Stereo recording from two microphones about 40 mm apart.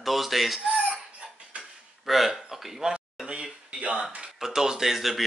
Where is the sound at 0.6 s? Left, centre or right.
Right.